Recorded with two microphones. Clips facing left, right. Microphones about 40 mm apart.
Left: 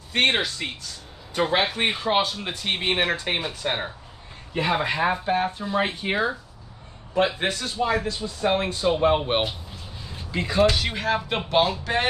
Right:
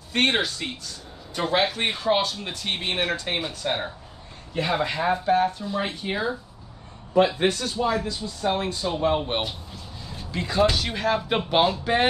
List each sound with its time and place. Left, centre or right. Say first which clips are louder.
0.1 s speech: left 1 dB; centre; by 6.3 s left
7.3 s speech: right 2 dB; left
10.0 s speech: left 2 dB; centre
11.4 s speech: left 1 dB; centre